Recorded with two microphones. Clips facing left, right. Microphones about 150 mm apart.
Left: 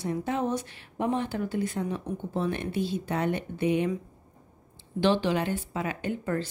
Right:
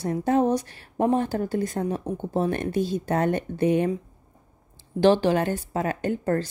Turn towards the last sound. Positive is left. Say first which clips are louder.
# right 5 dB
turn(degrees=-40)  # may be behind; listen again after turning